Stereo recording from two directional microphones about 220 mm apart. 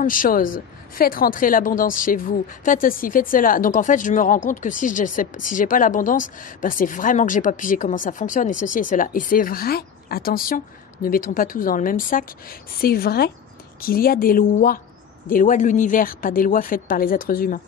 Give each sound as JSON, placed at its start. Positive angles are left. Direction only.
{"t": 0.0, "sound": "a woman's voice", "side_deg": 40}